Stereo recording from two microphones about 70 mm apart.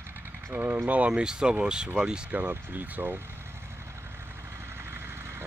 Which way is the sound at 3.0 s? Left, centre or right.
Right.